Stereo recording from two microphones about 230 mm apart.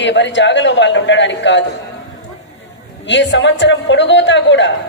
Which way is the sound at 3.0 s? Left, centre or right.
Left.